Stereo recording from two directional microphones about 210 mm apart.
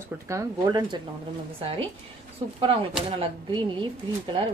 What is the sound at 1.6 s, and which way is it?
Speech, 25° right (ahead or behind).